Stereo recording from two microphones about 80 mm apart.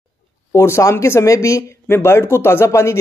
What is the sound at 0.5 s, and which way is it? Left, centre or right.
Speech, left.